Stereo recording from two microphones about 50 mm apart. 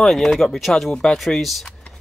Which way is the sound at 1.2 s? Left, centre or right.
Centre.